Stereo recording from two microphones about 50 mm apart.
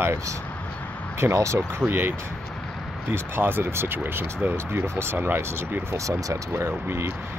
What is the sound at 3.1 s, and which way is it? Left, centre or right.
Speech, right.